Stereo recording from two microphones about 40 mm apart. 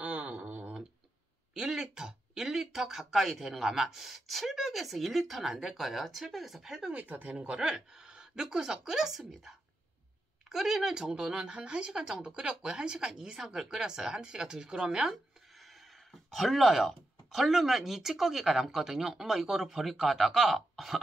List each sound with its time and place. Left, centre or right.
0.0 s a sound: right
1.5 s speech: centre
7.1 s speech: right
7.3 s speech: right
15.6 s speech: centre